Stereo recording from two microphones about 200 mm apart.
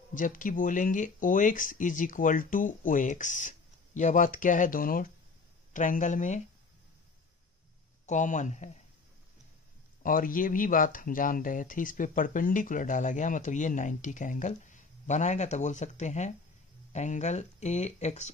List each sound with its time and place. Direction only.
0.1 s speech: 40° left (ahead or behind)
8.1 s speech: 40° left (ahead or behind)
10.0 s speech: 45° left (ahead or behind)